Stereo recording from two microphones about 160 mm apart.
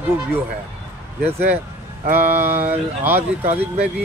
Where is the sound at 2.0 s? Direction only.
15° right (ahead or behind).